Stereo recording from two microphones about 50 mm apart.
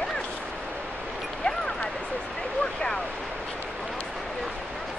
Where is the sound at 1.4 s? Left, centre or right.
Left.